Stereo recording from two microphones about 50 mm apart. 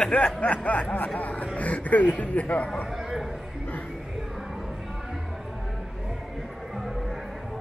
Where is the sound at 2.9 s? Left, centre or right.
Centre.